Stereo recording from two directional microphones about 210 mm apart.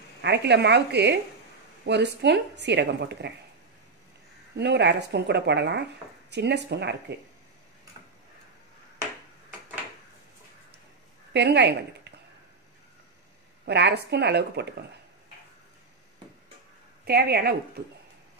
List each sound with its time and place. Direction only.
0.2 s a woman's voice: 55° right (ahead or behind)
4.6 s a woman's voice: 55° right (ahead or behind)
11.3 s a woman's voice: 55° right (ahead or behind)
13.7 s a woman's voice: 55° right (ahead or behind)
17.0 s a woman's voice: 50° right (ahead or behind)